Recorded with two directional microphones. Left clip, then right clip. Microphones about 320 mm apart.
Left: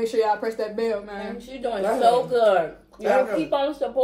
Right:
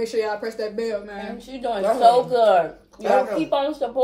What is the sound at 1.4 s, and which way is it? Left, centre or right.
Speech, centre.